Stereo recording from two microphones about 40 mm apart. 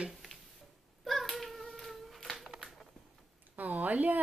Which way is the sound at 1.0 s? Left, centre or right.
Centre.